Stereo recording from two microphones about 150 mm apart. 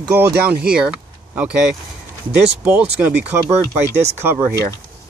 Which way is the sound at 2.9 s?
10° right (ahead or behind).